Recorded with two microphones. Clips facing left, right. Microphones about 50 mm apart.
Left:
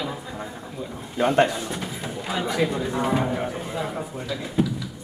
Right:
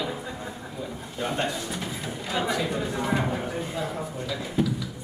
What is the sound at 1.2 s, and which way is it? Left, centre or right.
Speech, left.